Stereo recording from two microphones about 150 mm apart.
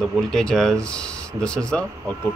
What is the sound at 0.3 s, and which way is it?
Speech, 5° left (ahead or behind).